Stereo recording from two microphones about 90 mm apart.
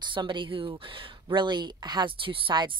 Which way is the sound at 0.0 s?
60° right (ahead or behind).